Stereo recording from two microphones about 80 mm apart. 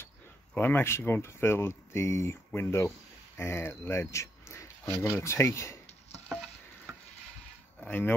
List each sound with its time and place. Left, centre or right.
0.6 s speech: left
4.1 s a sound: left
5.0 s speech: left
7.8 s speech: left